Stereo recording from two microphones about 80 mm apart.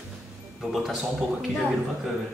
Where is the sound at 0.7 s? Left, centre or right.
Centre.